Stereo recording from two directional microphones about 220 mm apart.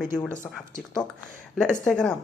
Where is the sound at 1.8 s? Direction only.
5° left (ahead or behind).